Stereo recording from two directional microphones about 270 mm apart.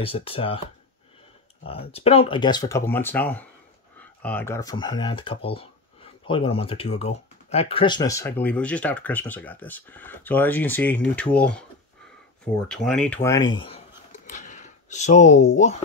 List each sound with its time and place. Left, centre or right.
0.0 s speech: left
1.6 s speech: left